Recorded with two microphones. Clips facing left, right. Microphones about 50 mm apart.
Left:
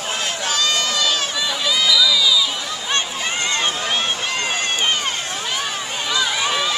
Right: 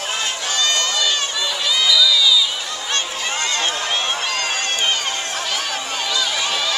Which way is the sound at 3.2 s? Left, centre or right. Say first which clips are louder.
Even; centre.